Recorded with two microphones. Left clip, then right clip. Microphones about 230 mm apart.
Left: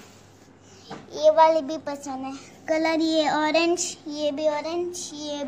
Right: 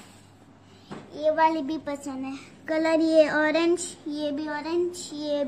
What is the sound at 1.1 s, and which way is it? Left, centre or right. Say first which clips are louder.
Speech: left 6 dB; left.